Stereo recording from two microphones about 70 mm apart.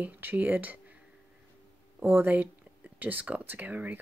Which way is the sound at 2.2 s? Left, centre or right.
Right.